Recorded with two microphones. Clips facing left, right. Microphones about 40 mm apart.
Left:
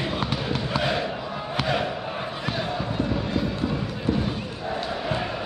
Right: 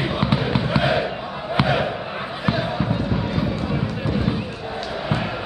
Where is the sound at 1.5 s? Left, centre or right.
Centre.